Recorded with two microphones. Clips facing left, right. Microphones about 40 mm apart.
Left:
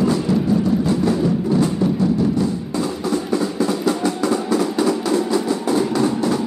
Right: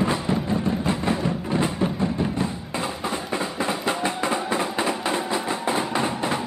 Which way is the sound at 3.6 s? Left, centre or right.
Right.